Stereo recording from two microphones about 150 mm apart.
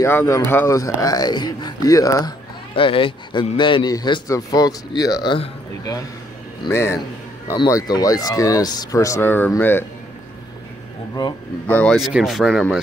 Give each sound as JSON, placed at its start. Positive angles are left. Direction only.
{"t": 0.0, "sound": "a man's voice", "side_deg": 15}
{"t": 2.7, "sound": "a man's voice", "side_deg": 35}
{"t": 6.7, "sound": "a man's voice", "side_deg": 15}
{"t": 11.6, "sound": "speech", "side_deg": 10}
{"t": 12.0, "sound": "speech", "side_deg": -5}